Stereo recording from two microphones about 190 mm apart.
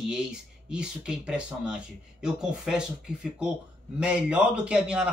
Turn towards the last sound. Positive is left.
turn(degrees=-5)  # may be behind; listen again after turning